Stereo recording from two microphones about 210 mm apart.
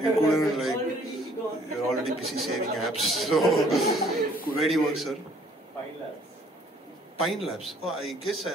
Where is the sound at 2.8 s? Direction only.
Centre (ahead or behind).